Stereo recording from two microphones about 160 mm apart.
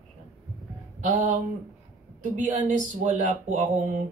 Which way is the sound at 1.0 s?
55° right (ahead or behind).